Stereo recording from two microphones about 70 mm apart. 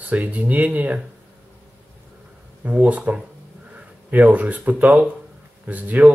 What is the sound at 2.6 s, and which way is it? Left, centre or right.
Speech, right.